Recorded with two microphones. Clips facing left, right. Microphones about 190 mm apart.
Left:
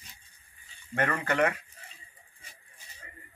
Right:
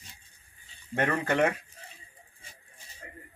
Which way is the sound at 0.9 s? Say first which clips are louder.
Right 2 dB; 15° right (ahead or behind).